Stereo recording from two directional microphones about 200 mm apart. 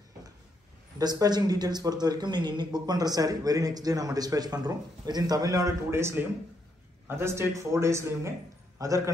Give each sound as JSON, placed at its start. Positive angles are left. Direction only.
{"t": 0.9, "sound": "a man's voice", "side_deg": -20}